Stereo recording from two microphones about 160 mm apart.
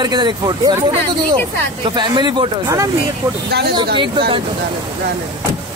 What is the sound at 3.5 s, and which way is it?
Speech, 90° right.